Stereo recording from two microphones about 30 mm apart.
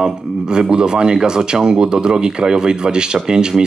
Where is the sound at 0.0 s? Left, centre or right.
Right.